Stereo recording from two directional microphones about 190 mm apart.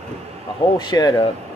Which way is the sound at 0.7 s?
20° left (ahead or behind).